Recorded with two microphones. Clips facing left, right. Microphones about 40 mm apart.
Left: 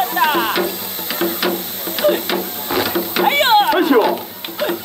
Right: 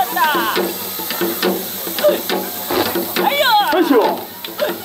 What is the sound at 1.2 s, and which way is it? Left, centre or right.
Music, centre.